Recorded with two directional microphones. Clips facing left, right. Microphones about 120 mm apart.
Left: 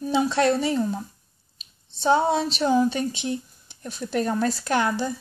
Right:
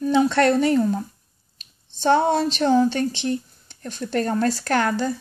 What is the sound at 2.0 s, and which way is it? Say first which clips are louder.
Speech: right 2 dB; 5° left (ahead or behind).